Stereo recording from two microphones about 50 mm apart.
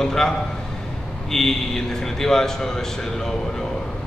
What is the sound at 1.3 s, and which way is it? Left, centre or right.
A man's voice, centre.